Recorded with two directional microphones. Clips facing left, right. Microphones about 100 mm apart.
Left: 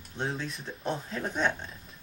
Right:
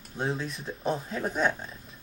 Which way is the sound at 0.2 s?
Centre (ahead or behind).